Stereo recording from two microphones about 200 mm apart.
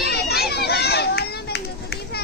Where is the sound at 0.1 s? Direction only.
55° left (ahead or behind).